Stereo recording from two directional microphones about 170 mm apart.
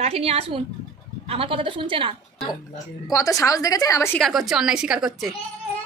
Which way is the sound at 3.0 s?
20° left (ahead or behind).